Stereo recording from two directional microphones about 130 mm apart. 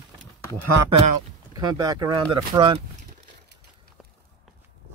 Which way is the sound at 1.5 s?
30° right (ahead or behind).